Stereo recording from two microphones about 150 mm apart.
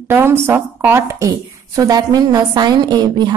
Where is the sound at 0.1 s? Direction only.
15° right (ahead or behind).